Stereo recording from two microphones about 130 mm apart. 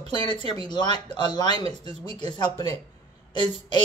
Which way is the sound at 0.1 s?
35° left (ahead or behind).